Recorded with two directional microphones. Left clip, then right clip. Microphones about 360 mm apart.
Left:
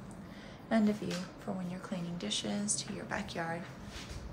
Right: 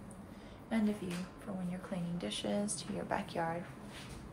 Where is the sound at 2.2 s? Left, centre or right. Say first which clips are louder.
Even; centre.